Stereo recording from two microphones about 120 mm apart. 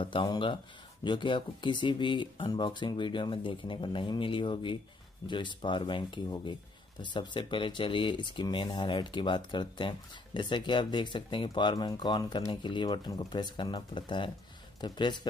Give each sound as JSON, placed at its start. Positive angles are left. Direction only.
{"t": 0.0, "sound": "speech", "side_deg": 45}